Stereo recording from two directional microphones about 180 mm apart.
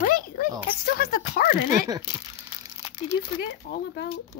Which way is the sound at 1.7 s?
20° right (ahead or behind).